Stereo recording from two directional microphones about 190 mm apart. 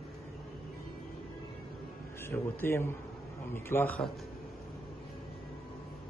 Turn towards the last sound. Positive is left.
turn(degrees=5)  # may be behind; listen again after turning